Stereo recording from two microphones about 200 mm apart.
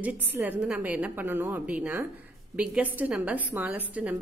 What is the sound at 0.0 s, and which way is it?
A woman's voice, 10° right (ahead or behind).